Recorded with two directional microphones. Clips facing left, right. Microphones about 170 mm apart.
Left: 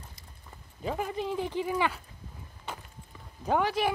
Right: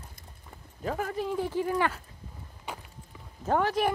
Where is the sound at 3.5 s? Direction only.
5° left (ahead or behind).